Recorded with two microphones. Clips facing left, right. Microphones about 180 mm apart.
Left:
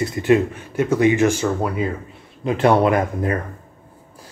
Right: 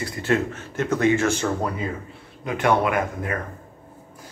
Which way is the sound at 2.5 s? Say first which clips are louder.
Left 5 dB; 30° left (ahead or behind).